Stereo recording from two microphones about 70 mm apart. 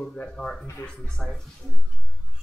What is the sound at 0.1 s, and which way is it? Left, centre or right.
Speech, centre.